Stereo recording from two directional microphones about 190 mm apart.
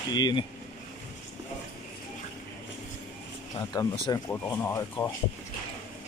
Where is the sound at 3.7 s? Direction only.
20° left (ahead or behind).